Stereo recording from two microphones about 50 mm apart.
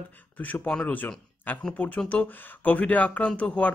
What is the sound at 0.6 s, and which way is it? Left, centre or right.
Speech, centre.